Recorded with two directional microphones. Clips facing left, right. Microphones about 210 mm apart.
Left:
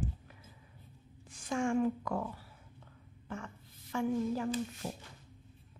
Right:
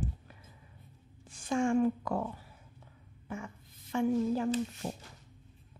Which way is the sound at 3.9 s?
25° right (ahead or behind).